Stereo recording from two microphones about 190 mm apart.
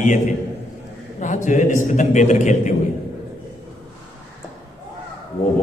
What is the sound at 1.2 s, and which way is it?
A man's voice, 40° left (ahead or behind).